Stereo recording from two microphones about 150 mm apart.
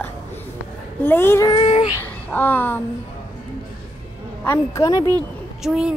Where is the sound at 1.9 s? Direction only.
15° left (ahead or behind).